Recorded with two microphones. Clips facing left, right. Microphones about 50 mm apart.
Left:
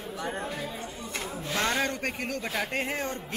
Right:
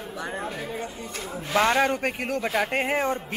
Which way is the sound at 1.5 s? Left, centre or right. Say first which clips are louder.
Right 7 dB; right.